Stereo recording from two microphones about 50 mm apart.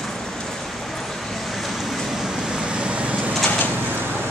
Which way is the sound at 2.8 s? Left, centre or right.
Right.